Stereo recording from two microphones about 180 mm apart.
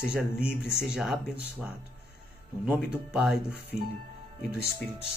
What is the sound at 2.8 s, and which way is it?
Speech, 5° right (ahead or behind).